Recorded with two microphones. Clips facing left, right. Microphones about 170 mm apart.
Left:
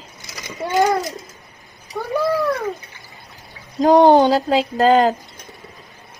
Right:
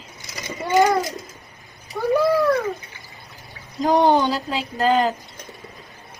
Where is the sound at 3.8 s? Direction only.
40° left (ahead or behind).